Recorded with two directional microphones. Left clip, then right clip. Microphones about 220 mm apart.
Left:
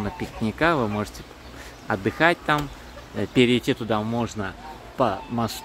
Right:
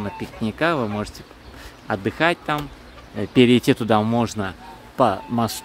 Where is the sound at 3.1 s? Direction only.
25° right (ahead or behind).